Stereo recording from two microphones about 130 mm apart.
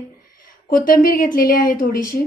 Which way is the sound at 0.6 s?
90° left.